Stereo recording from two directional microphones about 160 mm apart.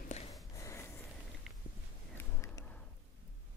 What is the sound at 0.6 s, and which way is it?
Snort, 20° left (ahead or behind).